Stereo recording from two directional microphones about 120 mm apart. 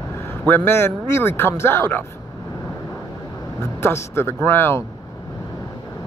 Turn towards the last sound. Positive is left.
turn(degrees=20)  # may be behind; listen again after turning